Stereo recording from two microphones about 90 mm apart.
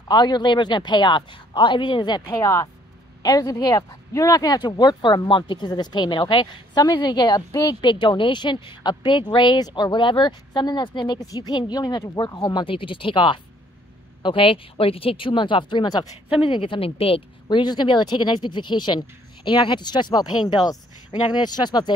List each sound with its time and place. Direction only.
0.1 s a woman's voice: 55° left (ahead or behind)
2.3 s speech: 35° left (ahead or behind)
7.9 s a woman's voice: 65° left (ahead or behind)
11.1 s speech: 45° left (ahead or behind)
12.3 s speech: 45° left (ahead or behind)
12.6 s speech: 75° left (ahead or behind)
14.2 s speech: 80° left; by 16.0 s 55° left (ahead or behind)
16.3 s a woman's voice: 75° left (ahead or behind); by 21.9 s 50° left (ahead or behind)